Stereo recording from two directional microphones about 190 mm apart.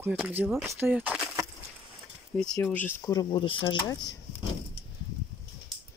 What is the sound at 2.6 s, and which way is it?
Speech, 10° left (ahead or behind).